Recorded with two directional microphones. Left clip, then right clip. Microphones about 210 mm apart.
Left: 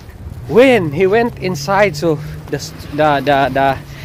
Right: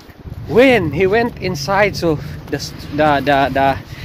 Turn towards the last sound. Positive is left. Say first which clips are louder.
# left 1 dB
turn(degrees=0)  # may be behind; listen again after turning